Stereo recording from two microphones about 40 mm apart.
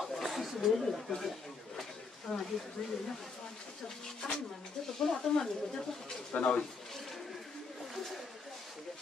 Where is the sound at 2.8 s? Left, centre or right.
Centre.